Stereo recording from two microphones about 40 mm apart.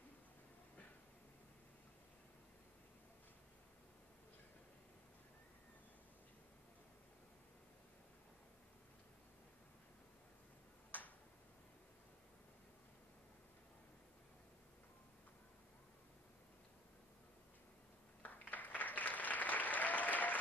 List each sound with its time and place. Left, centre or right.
18.2 s applause: left